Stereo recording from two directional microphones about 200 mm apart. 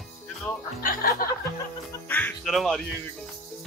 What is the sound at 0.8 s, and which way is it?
Speech, 45° left (ahead or behind).